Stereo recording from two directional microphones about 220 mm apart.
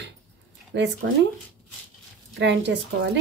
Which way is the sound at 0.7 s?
50° right (ahead or behind).